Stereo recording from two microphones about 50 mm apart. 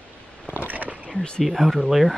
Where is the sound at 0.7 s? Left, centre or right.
Right.